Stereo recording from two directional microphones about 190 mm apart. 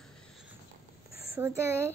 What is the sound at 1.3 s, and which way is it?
Speech, 15° right (ahead or behind).